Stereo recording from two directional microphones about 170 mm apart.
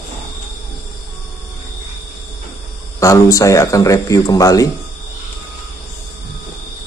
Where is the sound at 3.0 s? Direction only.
20° left (ahead or behind).